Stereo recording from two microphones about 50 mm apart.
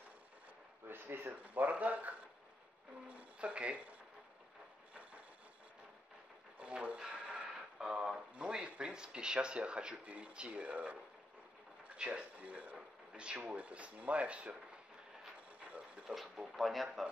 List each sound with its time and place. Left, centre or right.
0.8 s speech: right
1.3 s speech: right
6.6 s speech: right
7.0 s a sound: centre
7.9 s speech: centre
12.0 s speech: right
12.7 s a sound: centre
13.4 s speech: right
16.2 s speech: centre